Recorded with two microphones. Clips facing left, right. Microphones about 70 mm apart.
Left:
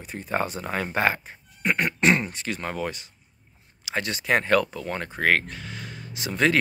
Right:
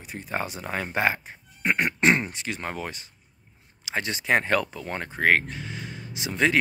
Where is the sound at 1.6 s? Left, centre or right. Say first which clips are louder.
Even; right.